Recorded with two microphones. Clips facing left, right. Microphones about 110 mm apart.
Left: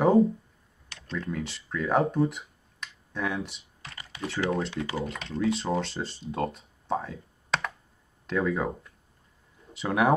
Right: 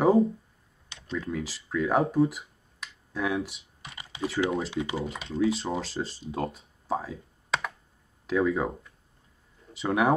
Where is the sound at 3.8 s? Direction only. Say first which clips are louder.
Even; 20° right (ahead or behind).